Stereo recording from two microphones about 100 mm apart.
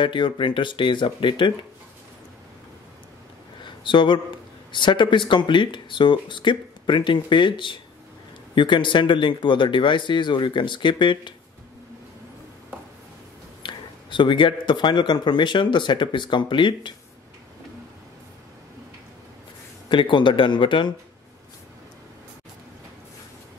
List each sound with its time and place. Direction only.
0.0 s a man's voice: 55° left (ahead or behind)
3.6 s a sound: 55° left (ahead or behind)
4.7 s a man's voice: 50° left (ahead or behind)
13.6 s a man's voice: 55° left (ahead or behind)
19.9 s speech: 55° left (ahead or behind)